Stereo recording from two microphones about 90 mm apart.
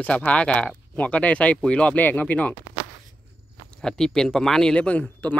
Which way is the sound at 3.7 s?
10° left (ahead or behind).